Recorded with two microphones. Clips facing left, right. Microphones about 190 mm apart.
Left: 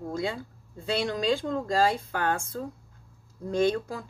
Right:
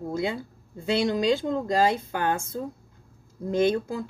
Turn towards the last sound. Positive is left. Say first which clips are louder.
# right 2 dB
turn(degrees=-20)  # may be behind; listen again after turning